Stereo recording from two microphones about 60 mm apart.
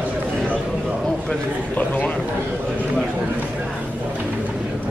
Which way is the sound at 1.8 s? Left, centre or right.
Left.